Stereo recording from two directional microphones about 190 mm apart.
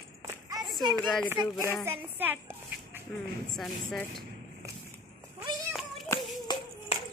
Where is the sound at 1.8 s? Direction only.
10° right (ahead or behind).